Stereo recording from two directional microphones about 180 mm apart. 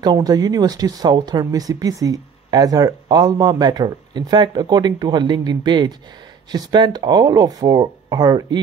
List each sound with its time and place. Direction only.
0.0 s speech: 20° right (ahead or behind)